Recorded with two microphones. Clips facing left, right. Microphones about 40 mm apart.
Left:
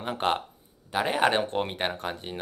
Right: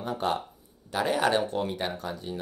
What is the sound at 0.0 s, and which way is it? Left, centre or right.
Speech, left.